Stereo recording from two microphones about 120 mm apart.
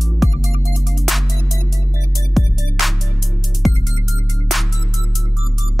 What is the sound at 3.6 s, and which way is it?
Music, centre (ahead or behind).